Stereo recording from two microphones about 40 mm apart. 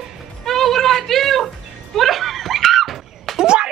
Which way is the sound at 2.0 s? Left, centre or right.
Centre.